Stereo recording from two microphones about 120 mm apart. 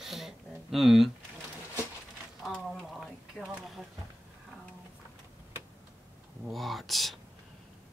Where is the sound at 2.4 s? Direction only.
Centre (ahead or behind).